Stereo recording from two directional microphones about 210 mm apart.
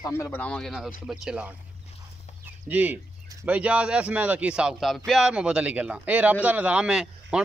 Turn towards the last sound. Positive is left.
turn(degrees=-5)  # may be behind; listen again after turning